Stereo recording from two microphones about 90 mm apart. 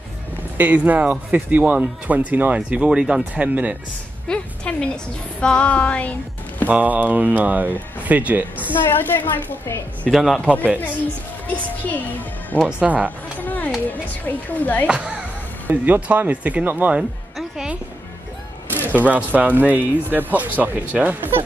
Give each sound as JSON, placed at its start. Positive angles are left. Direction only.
{"t": 0.6, "sound": "speech", "side_deg": -20}
{"t": 4.3, "sound": "speech", "side_deg": 10}
{"t": 6.7, "sound": "speech", "side_deg": -20}
{"t": 8.8, "sound": "speech", "side_deg": 25}
{"t": 10.0, "sound": "a man's voice", "side_deg": 0}
{"t": 10.5, "sound": "speech", "side_deg": -15}
{"t": 11.5, "sound": "a child's voice", "side_deg": 20}
{"t": 12.8, "sound": "speech", "side_deg": -15}
{"t": 13.4, "sound": "a sound", "side_deg": 20}
{"t": 13.8, "sound": "speech", "side_deg": 20}
{"t": 14.9, "sound": "speech", "side_deg": -10}
{"t": 17.4, "sound": "music", "side_deg": -5}
{"t": 19.0, "sound": "speech", "side_deg": -15}